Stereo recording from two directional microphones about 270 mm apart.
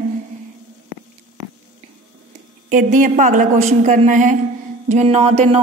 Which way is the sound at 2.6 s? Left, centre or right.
Right.